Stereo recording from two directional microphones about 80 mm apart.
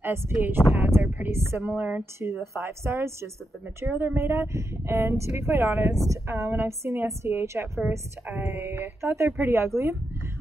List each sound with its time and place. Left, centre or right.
0.0 s speech: right
1.8 s speech: centre
2.1 s a woman's voice: right